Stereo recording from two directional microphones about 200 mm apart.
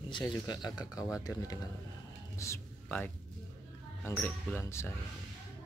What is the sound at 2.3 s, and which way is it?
Music, 15° left (ahead or behind).